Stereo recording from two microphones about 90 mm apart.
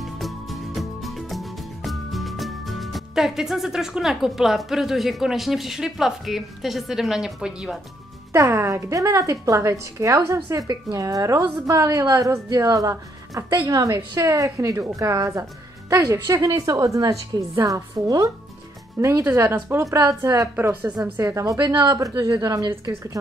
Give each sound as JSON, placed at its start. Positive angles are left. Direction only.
{"t": 0.0, "sound": "music", "side_deg": 0}
{"t": 8.3, "sound": "a woman's voice", "side_deg": -30}
{"t": 20.5, "sound": "speech", "side_deg": -20}
{"t": 21.2, "sound": "a woman's voice", "side_deg": -35}